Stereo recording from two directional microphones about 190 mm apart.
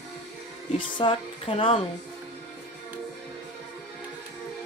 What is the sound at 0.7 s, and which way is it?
Speech, 25° left (ahead or behind).